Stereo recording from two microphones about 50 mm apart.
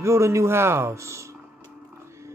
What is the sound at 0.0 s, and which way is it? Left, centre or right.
Speech, right.